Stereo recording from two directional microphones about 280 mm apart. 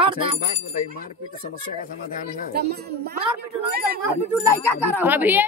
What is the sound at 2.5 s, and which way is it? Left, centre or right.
A woman's voice, right.